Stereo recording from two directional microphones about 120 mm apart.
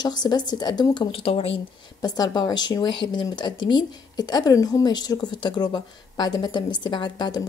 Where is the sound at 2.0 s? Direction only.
35° left (ahead or behind).